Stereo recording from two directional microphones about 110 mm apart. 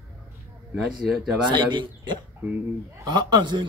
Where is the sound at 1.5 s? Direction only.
45° right (ahead or behind).